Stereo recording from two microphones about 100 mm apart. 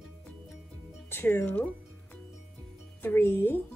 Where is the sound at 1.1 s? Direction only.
20° left (ahead or behind).